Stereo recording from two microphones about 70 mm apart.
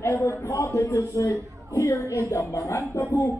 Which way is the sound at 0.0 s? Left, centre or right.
Left.